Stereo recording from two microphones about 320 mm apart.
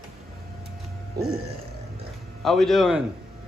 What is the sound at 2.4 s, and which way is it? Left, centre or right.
Speech, centre.